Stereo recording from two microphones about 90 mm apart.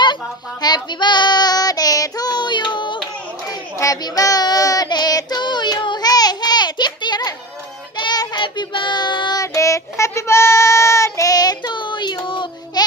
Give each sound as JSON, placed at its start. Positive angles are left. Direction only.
{"t": 0.0, "sound": "child singing", "side_deg": 55}
{"t": 3.4, "sound": "child singing", "side_deg": 40}
{"t": 9.4, "sound": "child singing", "side_deg": 35}